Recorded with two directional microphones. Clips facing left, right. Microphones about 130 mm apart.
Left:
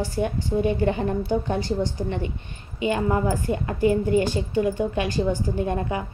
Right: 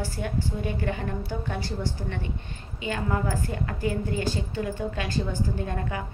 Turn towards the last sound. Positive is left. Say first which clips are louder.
# left 6 dB
turn(degrees=20)  # may be behind; listen again after turning